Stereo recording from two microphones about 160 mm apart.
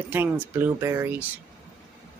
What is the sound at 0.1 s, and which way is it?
Speech, 10° right (ahead or behind).